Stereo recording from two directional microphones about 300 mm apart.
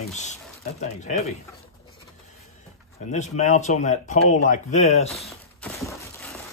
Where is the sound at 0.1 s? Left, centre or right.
Left.